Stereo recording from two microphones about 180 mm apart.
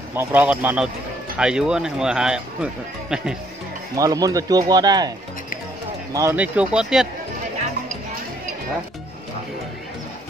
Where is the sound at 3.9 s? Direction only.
20° right (ahead or behind).